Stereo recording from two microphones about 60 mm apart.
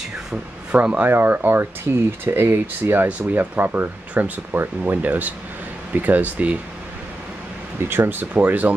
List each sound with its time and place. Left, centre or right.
0.7 s speech: right
3.1 s speech: right
7.9 s speech: right